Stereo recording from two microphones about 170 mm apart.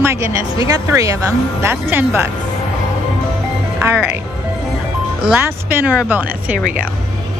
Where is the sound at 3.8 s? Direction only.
15° right (ahead or behind).